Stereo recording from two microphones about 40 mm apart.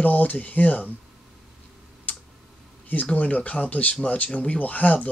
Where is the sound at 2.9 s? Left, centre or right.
Left.